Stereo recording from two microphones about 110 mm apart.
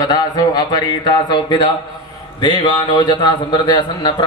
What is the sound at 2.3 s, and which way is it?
A man's voice, 45° left (ahead or behind).